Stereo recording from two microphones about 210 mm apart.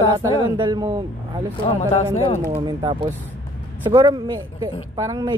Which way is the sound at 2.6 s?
20° right (ahead or behind).